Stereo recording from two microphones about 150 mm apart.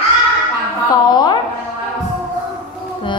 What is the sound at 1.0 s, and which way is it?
Music, 30° left (ahead or behind).